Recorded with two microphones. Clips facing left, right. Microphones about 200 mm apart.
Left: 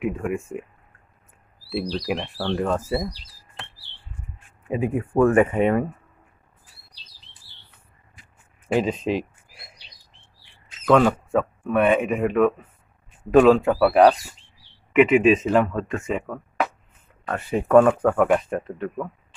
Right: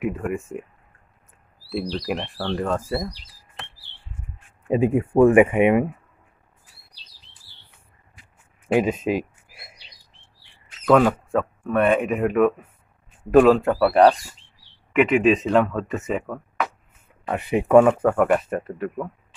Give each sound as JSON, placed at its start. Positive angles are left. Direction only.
{"t": 0.0, "sound": "speech", "side_deg": 0}
{"t": 2.0, "sound": "speech", "side_deg": 0}
{"t": 4.7, "sound": "speech", "side_deg": -25}
{"t": 5.2, "sound": "speech", "side_deg": -15}
{"t": 8.6, "sound": "speech", "side_deg": -5}
{"t": 9.0, "sound": "a sound", "side_deg": -5}
{"t": 10.9, "sound": "speech", "side_deg": -5}
{"t": 17.3, "sound": "speech", "side_deg": -15}